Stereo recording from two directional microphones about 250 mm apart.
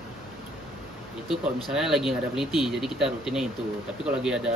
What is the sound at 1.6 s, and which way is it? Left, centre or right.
Speech, centre.